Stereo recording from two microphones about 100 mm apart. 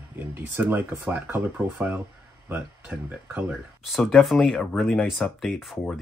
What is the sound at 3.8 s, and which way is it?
Speech, centre (ahead or behind).